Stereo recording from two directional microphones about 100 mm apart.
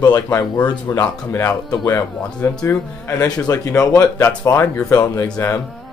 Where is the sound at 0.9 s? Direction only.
30° left (ahead or behind).